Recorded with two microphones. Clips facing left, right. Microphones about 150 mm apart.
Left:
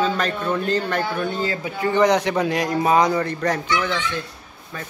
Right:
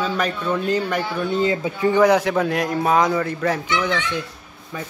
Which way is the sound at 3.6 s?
20° right (ahead or behind).